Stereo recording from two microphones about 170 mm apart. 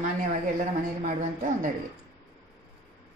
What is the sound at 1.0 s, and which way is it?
Speech, 50° right (ahead or behind).